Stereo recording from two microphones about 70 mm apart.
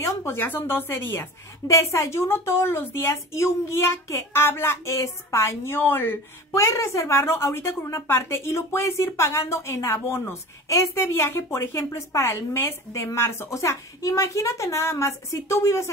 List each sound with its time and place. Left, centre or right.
0.0 s a woman's voice: left
1.7 s a woman's voice: left
6.5 s a woman's voice: left